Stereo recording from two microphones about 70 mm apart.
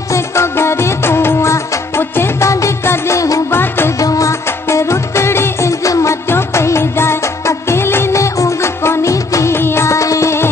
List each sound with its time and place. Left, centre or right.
0.1 s music: left
3.2 s music of bollywood: left
4.0 s music: left
6.2 s music of bollywood: left